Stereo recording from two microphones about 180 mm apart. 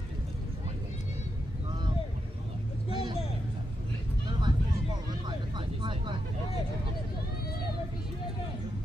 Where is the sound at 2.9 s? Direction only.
25° right (ahead or behind).